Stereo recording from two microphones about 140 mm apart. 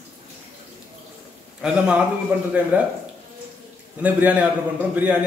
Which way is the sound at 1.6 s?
10° right (ahead or behind).